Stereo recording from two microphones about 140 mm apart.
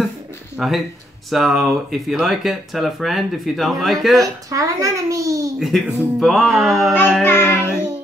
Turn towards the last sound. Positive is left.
turn(degrees=15)  # may be behind; listen again after turning